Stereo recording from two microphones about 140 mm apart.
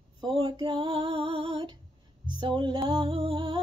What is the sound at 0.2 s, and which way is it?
Female singing, 35° right (ahead or behind).